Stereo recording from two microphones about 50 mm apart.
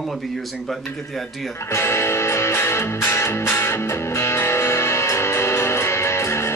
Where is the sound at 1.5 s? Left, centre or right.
Left.